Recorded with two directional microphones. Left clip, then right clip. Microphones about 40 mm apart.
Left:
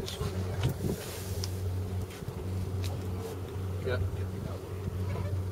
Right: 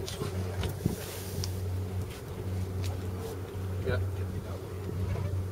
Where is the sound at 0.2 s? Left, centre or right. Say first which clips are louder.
Even; centre.